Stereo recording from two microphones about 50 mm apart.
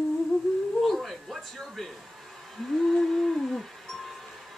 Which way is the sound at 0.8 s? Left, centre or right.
Centre.